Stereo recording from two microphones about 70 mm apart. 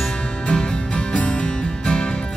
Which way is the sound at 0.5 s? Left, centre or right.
Centre.